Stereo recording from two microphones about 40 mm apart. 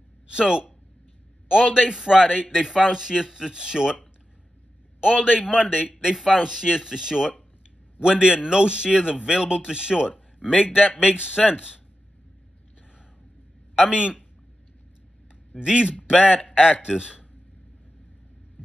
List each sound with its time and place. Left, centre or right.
0.3 s a man's voice: centre
5.0 s a man's voice: centre
13.7 s a man's voice: right
15.6 s a man's voice: right